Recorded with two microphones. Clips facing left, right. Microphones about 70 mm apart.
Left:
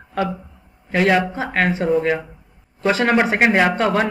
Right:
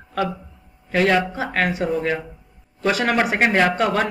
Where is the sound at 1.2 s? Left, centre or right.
Left.